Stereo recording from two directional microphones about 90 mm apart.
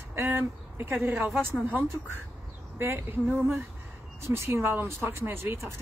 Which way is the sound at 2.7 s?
30° right (ahead or behind).